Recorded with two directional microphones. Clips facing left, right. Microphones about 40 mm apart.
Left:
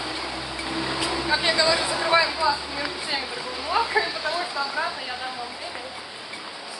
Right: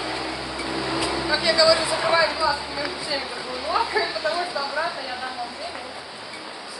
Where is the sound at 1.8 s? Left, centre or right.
Right.